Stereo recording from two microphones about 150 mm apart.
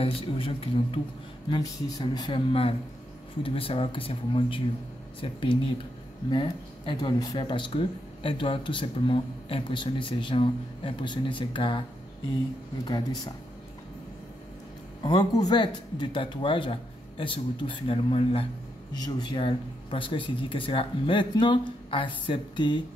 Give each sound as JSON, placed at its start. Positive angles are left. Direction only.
{"t": 0.0, "sound": "speech", "side_deg": 40}
{"t": 1.5, "sound": "speech", "side_deg": 25}
{"t": 12.8, "sound": "speech", "side_deg": 25}
{"t": 15.0, "sound": "speech", "side_deg": 25}